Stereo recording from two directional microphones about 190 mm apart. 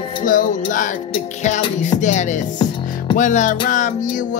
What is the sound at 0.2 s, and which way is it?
Music, 45° left (ahead or behind).